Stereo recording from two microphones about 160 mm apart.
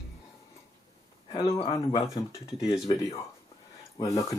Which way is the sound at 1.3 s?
25° left (ahead or behind).